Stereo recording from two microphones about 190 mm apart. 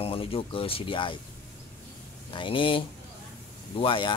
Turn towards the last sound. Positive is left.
turn(degrees=25)  # may be behind; listen again after turning